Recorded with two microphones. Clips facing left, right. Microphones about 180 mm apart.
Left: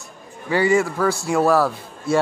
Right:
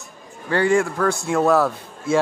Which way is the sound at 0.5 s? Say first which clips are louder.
Even; 5° left (ahead or behind).